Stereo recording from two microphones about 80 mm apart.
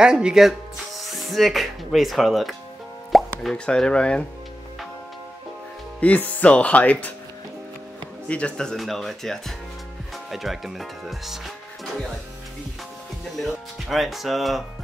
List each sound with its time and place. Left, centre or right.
0.0 s speech: centre
3.1 s plop: centre
3.5 s speech: centre
5.9 s speech: centre
8.3 s speech: centre
13.4 s speech: centre